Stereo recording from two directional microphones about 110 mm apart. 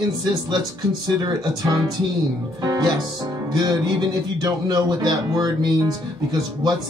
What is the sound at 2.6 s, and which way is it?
A man's voice, 35° right (ahead or behind).